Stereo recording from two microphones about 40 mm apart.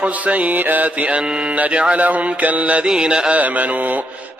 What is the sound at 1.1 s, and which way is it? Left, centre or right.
Mantra, right.